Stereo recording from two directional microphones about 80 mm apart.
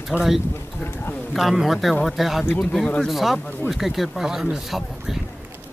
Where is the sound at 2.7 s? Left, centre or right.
Centre.